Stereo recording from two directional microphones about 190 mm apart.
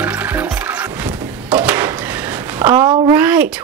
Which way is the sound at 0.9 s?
15° right (ahead or behind).